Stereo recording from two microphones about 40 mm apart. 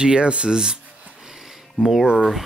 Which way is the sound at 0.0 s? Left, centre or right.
Right.